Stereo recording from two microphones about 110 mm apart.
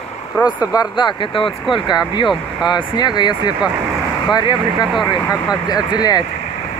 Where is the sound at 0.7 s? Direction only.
45° left (ahead or behind).